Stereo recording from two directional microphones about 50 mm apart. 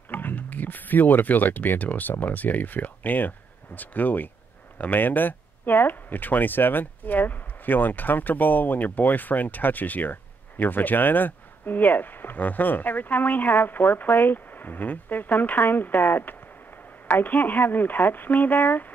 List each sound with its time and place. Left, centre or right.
0.1 s speech: left